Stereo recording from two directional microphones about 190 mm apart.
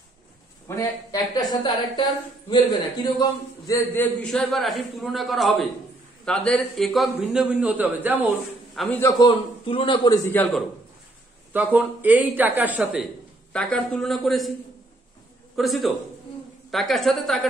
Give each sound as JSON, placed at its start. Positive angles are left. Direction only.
{"t": 0.7, "sound": "a woman's voice", "side_deg": 20}
{"t": 8.7, "sound": "a woman's voice", "side_deg": 10}
{"t": 9.2, "sound": "a man's voice", "side_deg": 25}
{"t": 10.3, "sound": "a woman's voice", "side_deg": 10}
{"t": 11.5, "sound": "a woman's voice", "side_deg": -10}
{"t": 13.5, "sound": "a man's voice", "side_deg": 5}
{"t": 15.5, "sound": "a man's voice", "side_deg": 0}